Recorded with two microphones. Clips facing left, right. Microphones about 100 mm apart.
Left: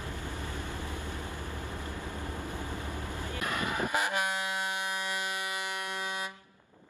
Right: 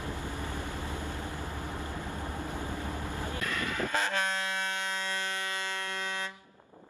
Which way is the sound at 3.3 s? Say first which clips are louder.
Left 3 dB; 20° left (ahead or behind).